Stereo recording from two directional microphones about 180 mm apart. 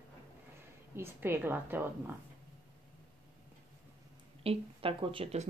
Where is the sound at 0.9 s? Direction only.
15° right (ahead or behind).